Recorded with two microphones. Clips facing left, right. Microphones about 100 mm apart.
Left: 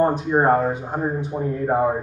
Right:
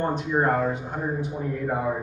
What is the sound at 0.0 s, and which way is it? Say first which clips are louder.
A man's voice: left 6 dB; 35° left (ahead or behind).